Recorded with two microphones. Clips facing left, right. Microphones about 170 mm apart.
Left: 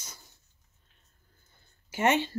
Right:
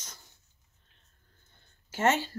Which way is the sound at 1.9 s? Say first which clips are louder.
Left 1 dB; 15° left (ahead or behind).